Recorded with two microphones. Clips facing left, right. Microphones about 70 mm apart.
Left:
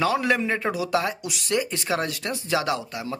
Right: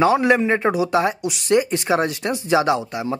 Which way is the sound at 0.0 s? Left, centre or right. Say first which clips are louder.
Right 6 dB; right.